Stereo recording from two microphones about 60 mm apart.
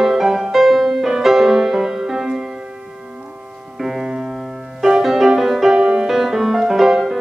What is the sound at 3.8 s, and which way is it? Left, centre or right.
Music, centre.